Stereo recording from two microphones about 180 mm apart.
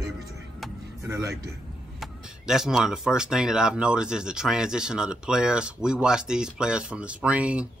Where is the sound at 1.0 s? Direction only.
15° right (ahead or behind).